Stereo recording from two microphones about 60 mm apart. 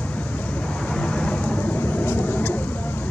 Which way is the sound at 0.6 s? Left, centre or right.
Centre.